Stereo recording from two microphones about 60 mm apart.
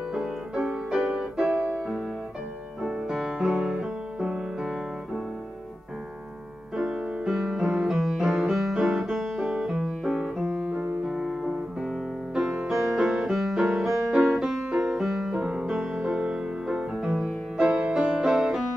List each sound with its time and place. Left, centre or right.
0.1 s music: centre
1.0 s piano: centre
2.8 s music: centre
6.8 s music: centre
12.6 s music: centre
17.6 s music: centre
18.2 s music: centre